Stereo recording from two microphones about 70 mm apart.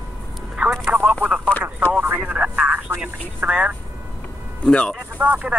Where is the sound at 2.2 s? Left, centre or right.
Centre.